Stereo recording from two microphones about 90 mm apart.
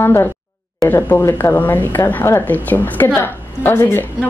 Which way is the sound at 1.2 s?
35° left (ahead or behind).